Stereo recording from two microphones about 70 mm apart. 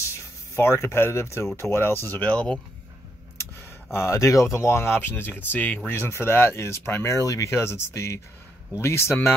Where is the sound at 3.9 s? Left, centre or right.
Left.